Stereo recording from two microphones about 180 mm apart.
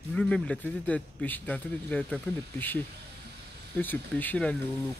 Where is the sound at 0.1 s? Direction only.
5° left (ahead or behind).